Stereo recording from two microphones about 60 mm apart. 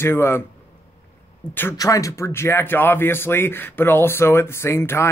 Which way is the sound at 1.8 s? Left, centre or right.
Left.